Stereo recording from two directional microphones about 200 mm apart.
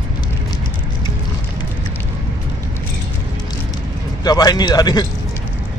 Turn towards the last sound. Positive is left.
turn(degrees=20)  # may be behind; listen again after turning